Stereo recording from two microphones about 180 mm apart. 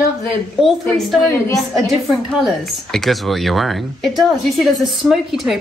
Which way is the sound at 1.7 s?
Centre (ahead or behind).